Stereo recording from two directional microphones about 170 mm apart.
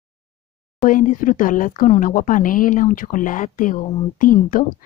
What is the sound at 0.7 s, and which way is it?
Speech, 50° left (ahead or behind).